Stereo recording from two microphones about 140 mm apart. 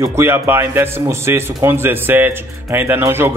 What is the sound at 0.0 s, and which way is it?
A man's voice, 20° right (ahead or behind).